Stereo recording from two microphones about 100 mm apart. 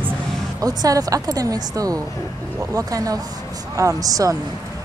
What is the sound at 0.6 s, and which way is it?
Speech, 40° right (ahead or behind).